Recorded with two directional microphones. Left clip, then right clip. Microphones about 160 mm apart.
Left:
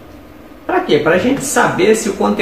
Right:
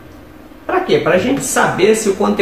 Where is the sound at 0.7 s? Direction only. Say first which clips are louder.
Left 1 dB; 5° right (ahead or behind).